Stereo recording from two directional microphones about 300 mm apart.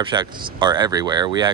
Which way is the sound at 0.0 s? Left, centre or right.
Centre.